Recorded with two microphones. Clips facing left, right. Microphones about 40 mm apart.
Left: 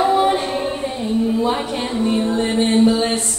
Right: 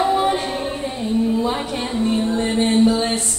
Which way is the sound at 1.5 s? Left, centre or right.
Centre.